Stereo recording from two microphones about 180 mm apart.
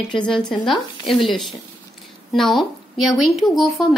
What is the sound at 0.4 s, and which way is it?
Speech, centre (ahead or behind).